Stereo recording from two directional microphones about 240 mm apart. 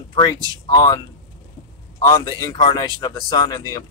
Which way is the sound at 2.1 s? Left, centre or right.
Centre.